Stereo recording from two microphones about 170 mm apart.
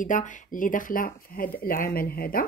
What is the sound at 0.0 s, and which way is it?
Speech, 50° left (ahead or behind).